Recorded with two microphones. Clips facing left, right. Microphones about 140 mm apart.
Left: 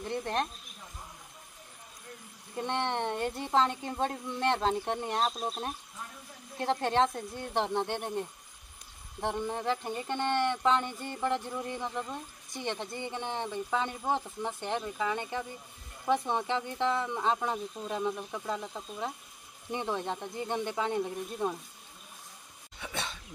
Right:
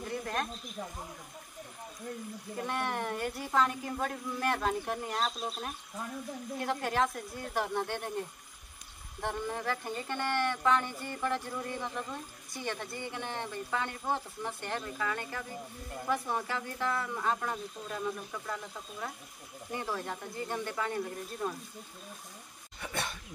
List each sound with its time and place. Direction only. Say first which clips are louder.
0.1 s speech: left 3 dB; 30° left (ahead or behind)
2.6 s speech: left 3 dB; 25° left (ahead or behind)
6.6 s speech: left 4 dB; 30° left (ahead or behind)
9.2 s speech: left 3 dB; 20° left (ahead or behind)
22.8 s a sound: right 1 dB; centre (ahead or behind)